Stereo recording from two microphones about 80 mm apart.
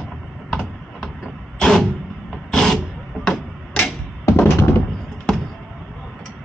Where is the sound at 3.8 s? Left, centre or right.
Left.